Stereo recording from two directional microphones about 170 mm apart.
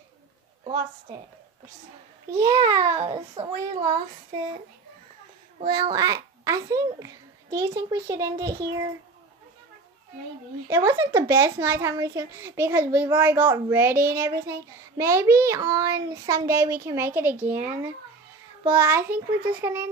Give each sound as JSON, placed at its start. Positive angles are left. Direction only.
{"t": 1.1, "sound": "a child's voice", "side_deg": -25}
{"t": 2.3, "sound": "a child's voice", "side_deg": -20}
{"t": 5.7, "sound": "a child's voice", "side_deg": -25}
{"t": 10.7, "sound": "a child's voice", "side_deg": -15}